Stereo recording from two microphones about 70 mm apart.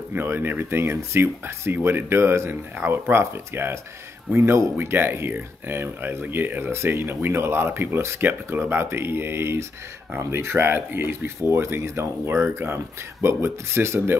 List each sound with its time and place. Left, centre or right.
0.1 s speech: right